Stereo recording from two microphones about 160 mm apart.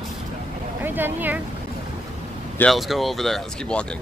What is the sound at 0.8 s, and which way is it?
Speech, 10° right (ahead or behind).